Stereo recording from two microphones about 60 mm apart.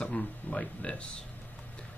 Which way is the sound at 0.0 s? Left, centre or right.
Left.